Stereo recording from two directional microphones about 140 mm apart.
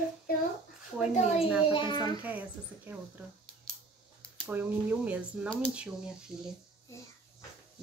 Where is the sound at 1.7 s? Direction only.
35° left (ahead or behind).